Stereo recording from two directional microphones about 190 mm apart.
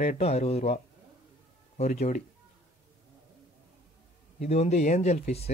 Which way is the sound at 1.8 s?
35° left (ahead or behind).